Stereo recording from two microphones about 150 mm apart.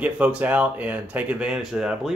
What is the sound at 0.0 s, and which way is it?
Speech, 10° right (ahead or behind).